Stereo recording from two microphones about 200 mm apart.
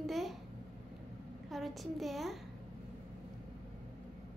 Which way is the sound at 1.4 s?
Centre (ahead or behind).